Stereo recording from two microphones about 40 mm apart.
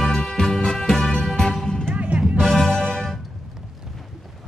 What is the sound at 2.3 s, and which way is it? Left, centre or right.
Music, centre.